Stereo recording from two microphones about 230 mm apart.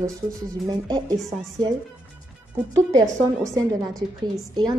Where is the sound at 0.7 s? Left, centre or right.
Centre.